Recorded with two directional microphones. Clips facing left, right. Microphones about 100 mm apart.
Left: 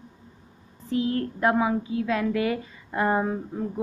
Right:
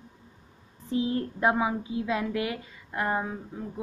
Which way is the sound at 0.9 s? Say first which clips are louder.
Left 2 dB; 20° right (ahead or behind).